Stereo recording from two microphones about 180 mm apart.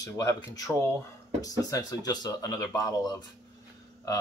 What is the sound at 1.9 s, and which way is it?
Speech, 20° left (ahead or behind).